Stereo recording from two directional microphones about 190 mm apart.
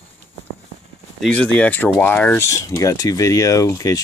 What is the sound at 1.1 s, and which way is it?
Speech, 5° left (ahead or behind).